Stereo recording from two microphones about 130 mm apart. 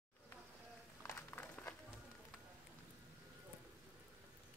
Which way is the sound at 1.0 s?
15° left (ahead or behind).